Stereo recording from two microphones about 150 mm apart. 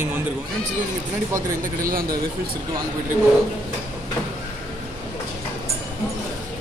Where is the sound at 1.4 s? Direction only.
75° right (ahead or behind).